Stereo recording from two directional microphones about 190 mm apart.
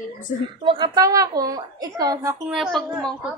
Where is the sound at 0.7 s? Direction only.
25° right (ahead or behind).